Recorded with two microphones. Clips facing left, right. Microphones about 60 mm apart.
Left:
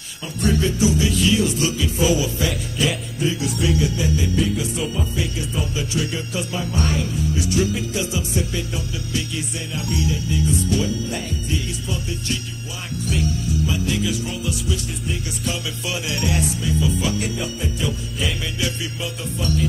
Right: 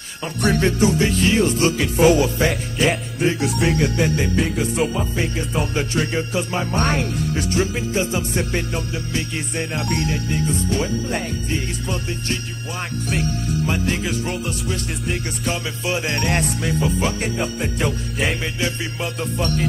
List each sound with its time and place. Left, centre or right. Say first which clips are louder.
0.4 s music: right 2 dB; right
5.5 s music: right 4 dB; right
5.9 s music: right 3 dB; right
14.3 s music: right 1 dB; right
17.0 s music: right 2 dB; right
19.3 s music: even; right